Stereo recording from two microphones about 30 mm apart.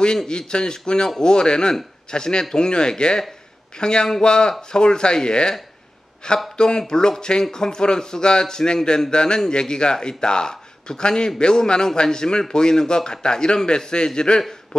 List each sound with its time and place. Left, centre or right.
0.3 s a man's voice: left
6.5 s a man's voice: left